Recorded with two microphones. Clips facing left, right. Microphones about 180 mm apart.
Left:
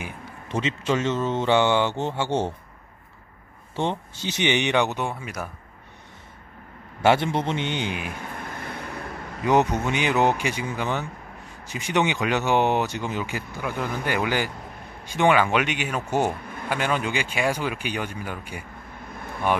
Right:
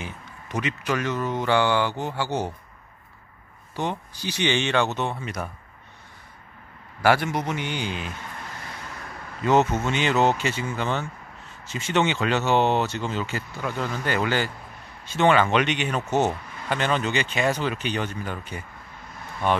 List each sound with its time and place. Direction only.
0.5 s speech: 25° left (ahead or behind)
3.7 s speech: 25° left (ahead or behind); by 5.5 s 5° left (ahead or behind)
7.0 s speech: 25° left (ahead or behind)
8.5 s vehicle: 55° left (ahead or behind)
9.4 s speech: 15° left (ahead or behind)